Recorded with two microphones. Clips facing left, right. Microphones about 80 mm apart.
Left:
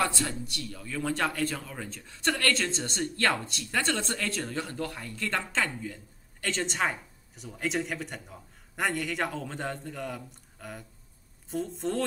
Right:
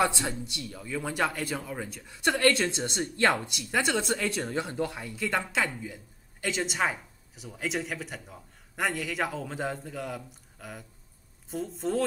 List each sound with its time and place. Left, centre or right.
0.0 s a man's voice: centre